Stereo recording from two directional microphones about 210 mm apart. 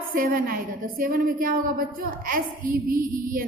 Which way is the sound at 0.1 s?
40° right (ahead or behind).